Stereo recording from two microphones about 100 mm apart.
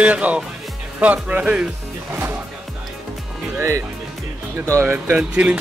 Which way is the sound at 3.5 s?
30° right (ahead or behind).